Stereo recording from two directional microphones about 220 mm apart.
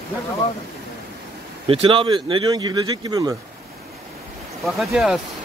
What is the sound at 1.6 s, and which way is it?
Speech, 25° right (ahead or behind).